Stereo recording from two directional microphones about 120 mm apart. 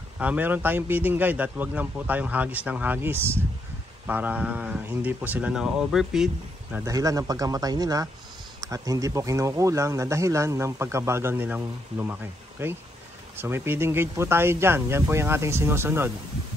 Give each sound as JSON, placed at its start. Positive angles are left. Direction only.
{"t": 0.2, "sound": "a man's voice", "side_deg": -15}
{"t": 6.8, "sound": "speech", "side_deg": -30}